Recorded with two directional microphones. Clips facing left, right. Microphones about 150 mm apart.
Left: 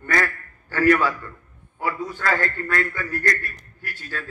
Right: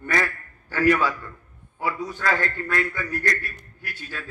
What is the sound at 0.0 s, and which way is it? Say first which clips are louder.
Quack: left 1 dB; 15° right (ahead or behind).